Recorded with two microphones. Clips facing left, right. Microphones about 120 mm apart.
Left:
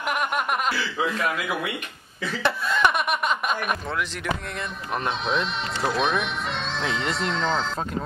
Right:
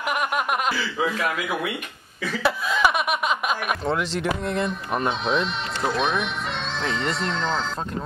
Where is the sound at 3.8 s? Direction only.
30° right (ahead or behind).